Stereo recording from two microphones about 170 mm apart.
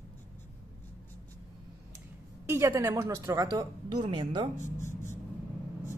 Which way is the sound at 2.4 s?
15° right (ahead or behind).